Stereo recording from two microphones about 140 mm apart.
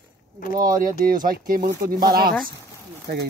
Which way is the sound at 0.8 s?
85° right.